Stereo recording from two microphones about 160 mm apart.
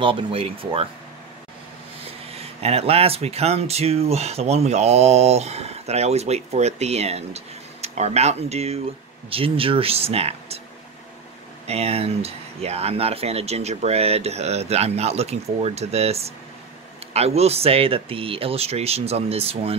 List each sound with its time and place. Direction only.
0.0 s speech: 35° right (ahead or behind)
2.3 s speech: 40° right (ahead or behind)
11.6 s speech: 40° right (ahead or behind)